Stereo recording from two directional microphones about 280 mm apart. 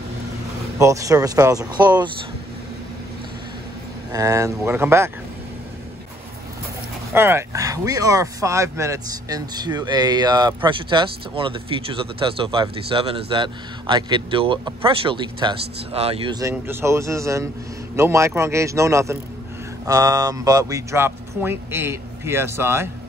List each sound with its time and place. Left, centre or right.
0.7 s speech: centre
4.1 s speech: centre
7.2 s speech: centre